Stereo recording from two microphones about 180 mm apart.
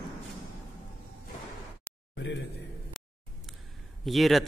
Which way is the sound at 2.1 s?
80° left.